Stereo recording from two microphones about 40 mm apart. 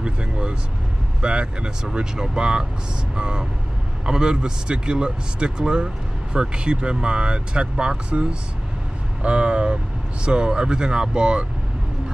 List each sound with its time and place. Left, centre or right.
0.0 s vehicle: right
1.2 s speech: right